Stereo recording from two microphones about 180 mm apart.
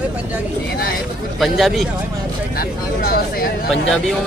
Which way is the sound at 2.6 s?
55° left (ahead or behind).